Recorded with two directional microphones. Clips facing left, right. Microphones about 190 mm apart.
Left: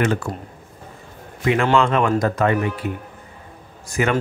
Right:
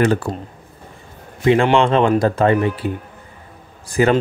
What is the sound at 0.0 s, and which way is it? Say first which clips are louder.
Speech: right 4 dB; 35° right (ahead or behind).